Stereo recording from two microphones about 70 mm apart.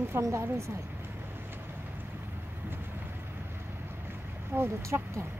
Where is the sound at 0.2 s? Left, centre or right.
Right.